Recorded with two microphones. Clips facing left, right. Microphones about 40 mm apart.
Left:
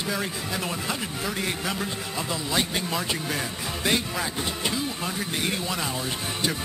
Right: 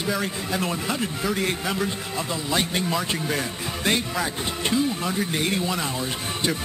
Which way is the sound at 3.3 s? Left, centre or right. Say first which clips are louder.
Right 2 dB; centre.